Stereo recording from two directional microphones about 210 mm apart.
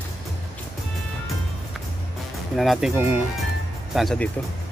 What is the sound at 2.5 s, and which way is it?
Speech, centre (ahead or behind).